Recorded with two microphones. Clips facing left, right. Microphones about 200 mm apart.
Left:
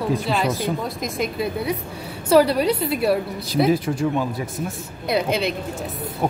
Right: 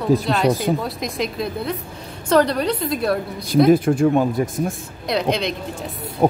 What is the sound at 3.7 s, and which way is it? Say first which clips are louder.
Speech: right 7 dB; 50° right (ahead or behind).